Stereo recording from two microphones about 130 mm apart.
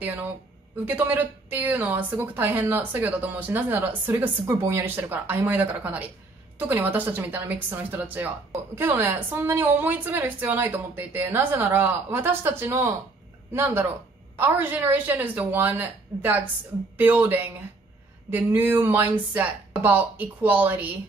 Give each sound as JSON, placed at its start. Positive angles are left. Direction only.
{"t": 0.8, "sound": "a woman's voice", "side_deg": -15}